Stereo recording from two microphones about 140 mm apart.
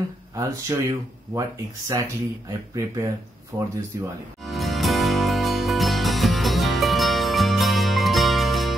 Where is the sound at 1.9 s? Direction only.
25° right (ahead or behind).